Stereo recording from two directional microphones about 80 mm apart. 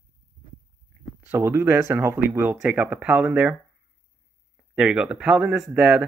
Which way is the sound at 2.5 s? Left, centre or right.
Centre.